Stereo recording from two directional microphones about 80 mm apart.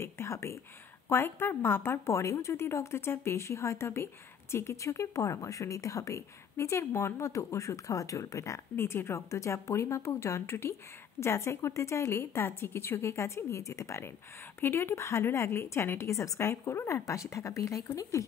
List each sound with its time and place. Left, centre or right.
0.0 s a woman's voice: left